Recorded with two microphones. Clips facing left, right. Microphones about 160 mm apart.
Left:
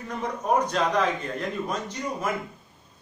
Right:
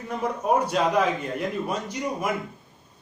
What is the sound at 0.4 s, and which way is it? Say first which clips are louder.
Speech: right 1 dB; 10° right (ahead or behind).